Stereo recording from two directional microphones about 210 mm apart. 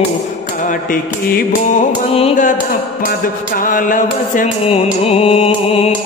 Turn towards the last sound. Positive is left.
turn(degrees=25)  # may be behind; listen again after turning